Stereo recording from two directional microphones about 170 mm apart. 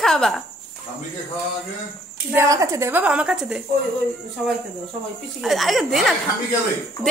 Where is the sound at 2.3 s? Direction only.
20° right (ahead or behind).